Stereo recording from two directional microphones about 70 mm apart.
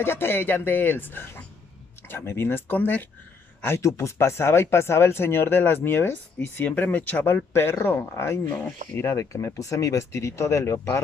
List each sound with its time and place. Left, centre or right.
0.0 s speech: left
3.6 s speech: left